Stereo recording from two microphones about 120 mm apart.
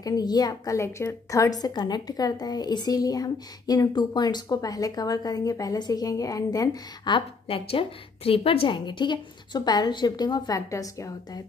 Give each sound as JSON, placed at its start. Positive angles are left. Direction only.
{"t": 0.0, "sound": "a woman's voice", "side_deg": 35}
{"t": 7.2, "sound": "a woman's voice", "side_deg": 50}